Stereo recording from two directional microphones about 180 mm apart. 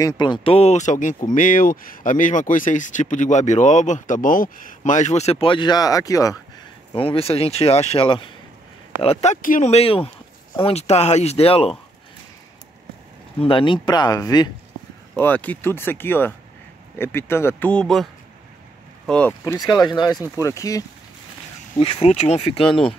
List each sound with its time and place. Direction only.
0.0 s speech: 25° left (ahead or behind)
6.9 s speech: 30° left (ahead or behind)
13.4 s speech: 30° left (ahead or behind)
15.1 s speech: 10° left (ahead or behind)
19.0 s speech: 5° left (ahead or behind)
19.4 s speech: 20° left (ahead or behind)
21.7 s speech: 30° left (ahead or behind)